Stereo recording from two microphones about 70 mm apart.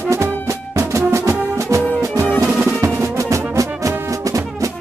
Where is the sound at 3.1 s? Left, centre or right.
Right.